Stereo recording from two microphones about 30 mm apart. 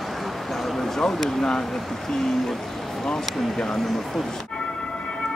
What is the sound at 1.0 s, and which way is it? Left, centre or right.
Speech, centre.